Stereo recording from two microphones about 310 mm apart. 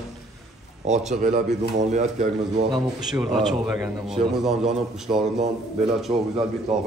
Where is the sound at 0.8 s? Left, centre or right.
Right.